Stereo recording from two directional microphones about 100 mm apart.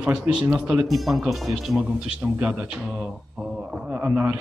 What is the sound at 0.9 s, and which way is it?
Speech, centre (ahead or behind).